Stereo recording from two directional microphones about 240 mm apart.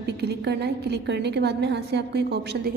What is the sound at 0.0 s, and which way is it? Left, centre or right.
A woman's voice, right.